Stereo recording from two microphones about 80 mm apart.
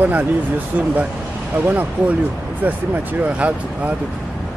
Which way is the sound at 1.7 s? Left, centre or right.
Right.